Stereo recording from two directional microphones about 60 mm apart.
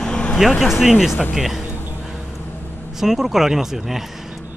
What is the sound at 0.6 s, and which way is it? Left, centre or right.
Speech, centre.